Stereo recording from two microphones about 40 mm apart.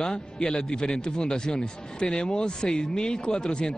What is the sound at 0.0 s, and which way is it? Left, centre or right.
Speech, centre.